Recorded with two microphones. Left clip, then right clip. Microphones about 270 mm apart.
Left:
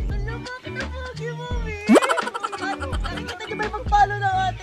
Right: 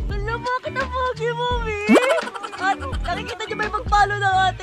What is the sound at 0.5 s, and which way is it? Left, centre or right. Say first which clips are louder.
Music: right 9 dB; centre.